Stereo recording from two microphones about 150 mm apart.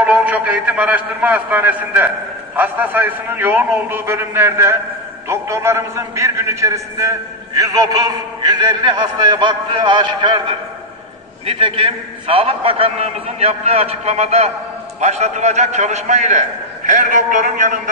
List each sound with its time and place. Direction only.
0.0 s a man's voice: 10° right (ahead or behind); by 10.4 s 30° right (ahead or behind)
11.4 s a man's voice: 35° right (ahead or behind); by 17.7 s 55° right (ahead or behind)